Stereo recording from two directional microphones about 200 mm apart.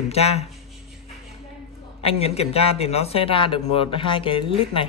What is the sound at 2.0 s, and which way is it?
A man's voice, 30° left (ahead or behind).